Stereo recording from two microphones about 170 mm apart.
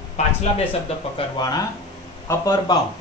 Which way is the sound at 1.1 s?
20° left (ahead or behind).